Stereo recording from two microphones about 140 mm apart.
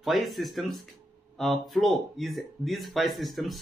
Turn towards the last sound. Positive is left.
turn(degrees=0)  # may be behind; listen again after turning